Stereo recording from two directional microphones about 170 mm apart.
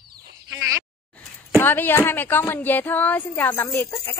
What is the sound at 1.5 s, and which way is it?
A woman's voice, 10° left (ahead or behind).